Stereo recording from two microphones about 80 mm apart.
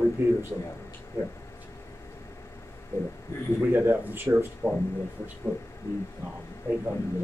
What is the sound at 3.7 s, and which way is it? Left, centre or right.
Speech, right.